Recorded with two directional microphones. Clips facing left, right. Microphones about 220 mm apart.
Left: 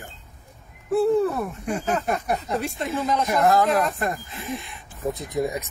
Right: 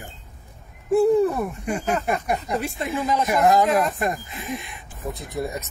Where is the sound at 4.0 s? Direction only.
15° right (ahead or behind).